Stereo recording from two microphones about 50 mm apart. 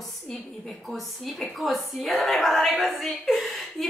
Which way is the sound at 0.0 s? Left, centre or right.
Centre.